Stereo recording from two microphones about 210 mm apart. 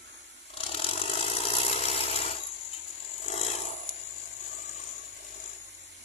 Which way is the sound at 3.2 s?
30° left (ahead or behind).